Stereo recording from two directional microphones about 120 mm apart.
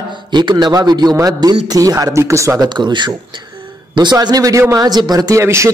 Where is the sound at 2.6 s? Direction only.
40° right (ahead or behind); by 5.7 s 25° right (ahead or behind).